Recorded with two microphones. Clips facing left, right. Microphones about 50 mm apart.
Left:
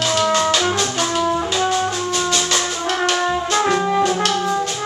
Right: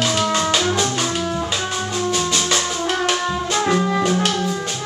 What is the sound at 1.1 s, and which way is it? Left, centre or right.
Music, centre.